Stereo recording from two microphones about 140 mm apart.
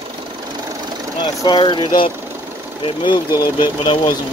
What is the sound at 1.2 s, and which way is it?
Speech, 30° left (ahead or behind).